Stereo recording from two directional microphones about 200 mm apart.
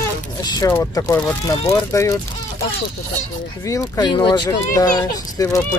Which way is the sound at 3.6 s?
20° left (ahead or behind).